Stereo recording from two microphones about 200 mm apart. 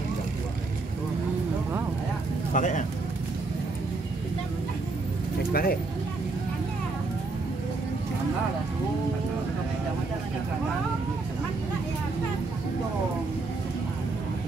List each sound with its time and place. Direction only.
2.5 s speech: 40° left (ahead or behind)
5.5 s vehicle: 50° left (ahead or behind)